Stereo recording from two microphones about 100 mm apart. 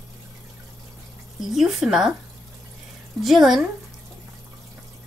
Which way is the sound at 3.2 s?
Centre (ahead or behind).